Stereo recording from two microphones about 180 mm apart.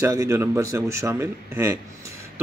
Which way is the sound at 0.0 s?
15° right (ahead or behind).